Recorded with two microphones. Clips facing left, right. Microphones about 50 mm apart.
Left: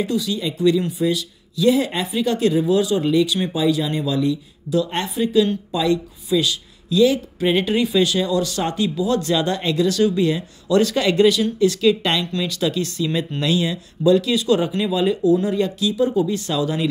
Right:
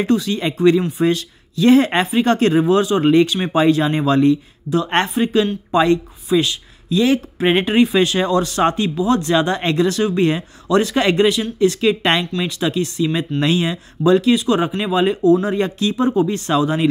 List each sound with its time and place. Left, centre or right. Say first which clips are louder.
0.0 s speech: right 4 dB; right